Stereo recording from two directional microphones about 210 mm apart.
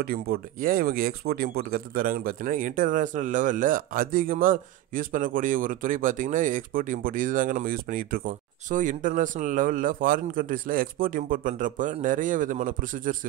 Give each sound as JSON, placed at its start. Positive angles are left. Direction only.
{"t": 0.0, "sound": "speech", "side_deg": -45}